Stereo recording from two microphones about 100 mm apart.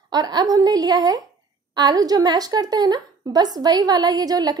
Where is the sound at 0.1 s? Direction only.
40° right (ahead or behind).